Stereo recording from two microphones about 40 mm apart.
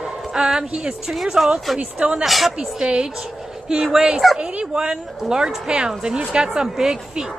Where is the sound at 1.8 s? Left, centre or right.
Right.